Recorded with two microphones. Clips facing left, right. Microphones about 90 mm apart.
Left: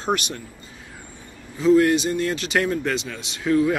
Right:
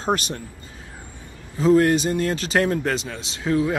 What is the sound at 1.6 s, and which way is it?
Speech, 40° right (ahead or behind).